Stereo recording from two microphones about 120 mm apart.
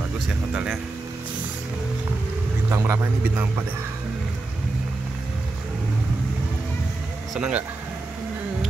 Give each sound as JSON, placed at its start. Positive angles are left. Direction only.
{"t": 2.7, "sound": "speech", "side_deg": -25}
{"t": 7.3, "sound": "speech", "side_deg": -10}